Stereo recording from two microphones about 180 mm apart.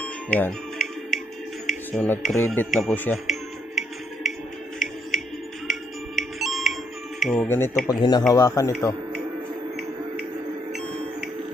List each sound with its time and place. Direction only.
0.0 s music: 5° left (ahead or behind)
1.7 s speech: 5° left (ahead or behind)
3.3 s music: centre (ahead or behind)
7.4 s speech: 15° left (ahead or behind)
7.9 s speech: 25° left (ahead or behind)